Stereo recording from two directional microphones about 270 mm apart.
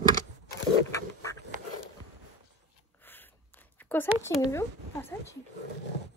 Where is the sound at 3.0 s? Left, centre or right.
Centre.